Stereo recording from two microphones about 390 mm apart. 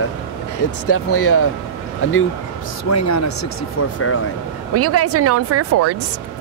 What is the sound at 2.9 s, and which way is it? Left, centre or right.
Speech, left.